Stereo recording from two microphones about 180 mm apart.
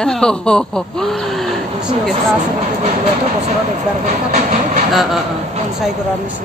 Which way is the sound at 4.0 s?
45° right (ahead or behind).